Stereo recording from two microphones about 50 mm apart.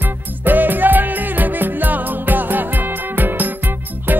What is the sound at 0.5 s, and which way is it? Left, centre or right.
Music, right.